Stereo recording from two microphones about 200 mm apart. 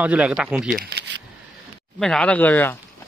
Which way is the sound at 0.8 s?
55° right (ahead or behind).